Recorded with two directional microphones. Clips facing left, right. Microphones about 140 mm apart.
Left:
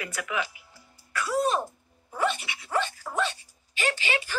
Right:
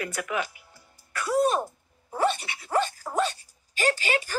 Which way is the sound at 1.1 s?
50° right (ahead or behind).